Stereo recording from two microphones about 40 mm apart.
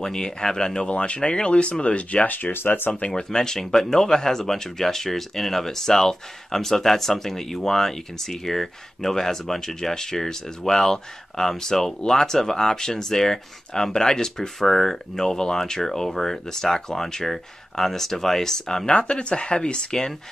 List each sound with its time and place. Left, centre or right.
0.0 s speech: centre
0.8 s speech: left
2.2 s speech: left
2.5 s speech: left
3.1 s speech: centre
18.9 s speech: left